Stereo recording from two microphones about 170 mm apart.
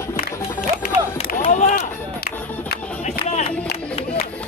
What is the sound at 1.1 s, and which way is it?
Run, 40° left (ahead or behind).